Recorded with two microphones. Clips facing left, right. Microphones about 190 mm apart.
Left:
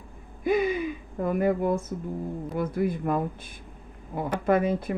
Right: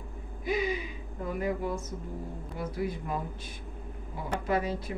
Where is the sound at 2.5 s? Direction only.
55° left (ahead or behind).